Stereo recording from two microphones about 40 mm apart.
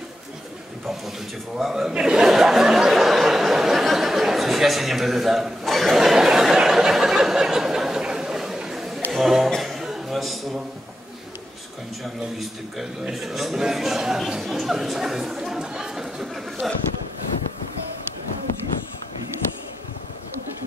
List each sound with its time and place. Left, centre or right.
1.6 s a man's voice: centre
2.0 s speech: centre
2.2 s a sound: centre
9.1 s a man's voice: centre
9.6 s chuckle: centre
12.0 s a man's voice: centre